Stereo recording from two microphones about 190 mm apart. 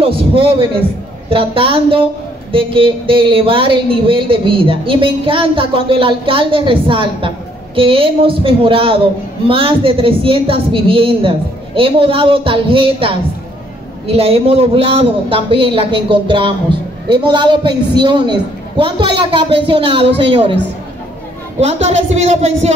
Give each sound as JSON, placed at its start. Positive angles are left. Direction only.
{"t": 0.0, "sound": "a sound", "side_deg": -30}
{"t": 1.3, "sound": "speech", "side_deg": -30}
{"t": 21.5, "sound": "speech", "side_deg": -35}